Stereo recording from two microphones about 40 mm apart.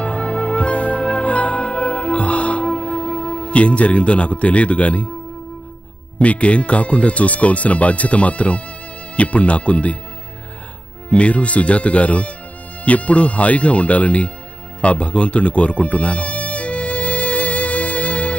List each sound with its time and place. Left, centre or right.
0.0 s music: left
6.1 s speech: left
11.1 s speech: left
14.8 s music: left